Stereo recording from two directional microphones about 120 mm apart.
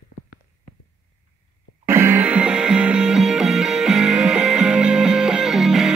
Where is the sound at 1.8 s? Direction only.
20° right (ahead or behind).